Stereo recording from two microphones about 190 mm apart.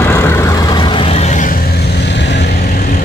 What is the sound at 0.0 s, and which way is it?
Vehicle, 15° left (ahead or behind).